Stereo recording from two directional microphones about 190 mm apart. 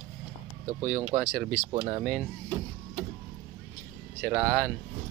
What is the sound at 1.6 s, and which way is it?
Speech, 30° right (ahead or behind).